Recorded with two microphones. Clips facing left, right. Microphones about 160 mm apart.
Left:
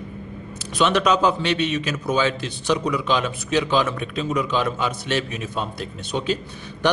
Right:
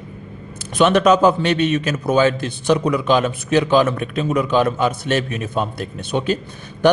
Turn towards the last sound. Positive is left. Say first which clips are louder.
# right 5 dB
turn(degrees=-50)  # may be behind; listen again after turning